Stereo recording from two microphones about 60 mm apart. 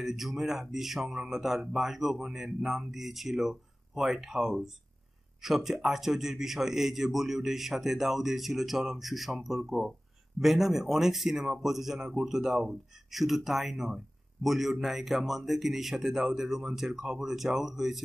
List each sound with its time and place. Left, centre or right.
0.0 s a man's voice: centre